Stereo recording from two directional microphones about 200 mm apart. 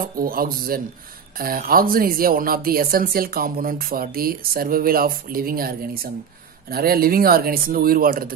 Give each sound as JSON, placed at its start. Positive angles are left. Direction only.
{"t": 0.0, "sound": "speech", "side_deg": -45}